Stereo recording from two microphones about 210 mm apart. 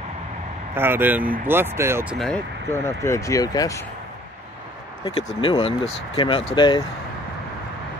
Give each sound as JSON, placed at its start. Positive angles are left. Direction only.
{"t": 0.7, "sound": "speech", "side_deg": -10}
{"t": 2.1, "sound": "speech", "side_deg": 5}
{"t": 5.0, "sound": "speech", "side_deg": 25}